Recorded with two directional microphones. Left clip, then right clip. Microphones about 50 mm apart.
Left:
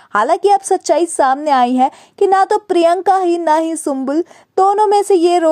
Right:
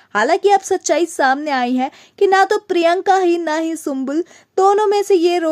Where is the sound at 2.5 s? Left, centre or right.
Centre.